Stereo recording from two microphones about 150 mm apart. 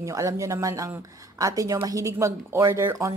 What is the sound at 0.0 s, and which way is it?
Speech, 20° right (ahead or behind).